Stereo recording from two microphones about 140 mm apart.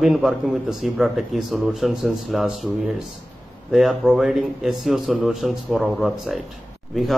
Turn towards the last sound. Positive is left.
turn(degrees=0)  # may be behind; listen again after turning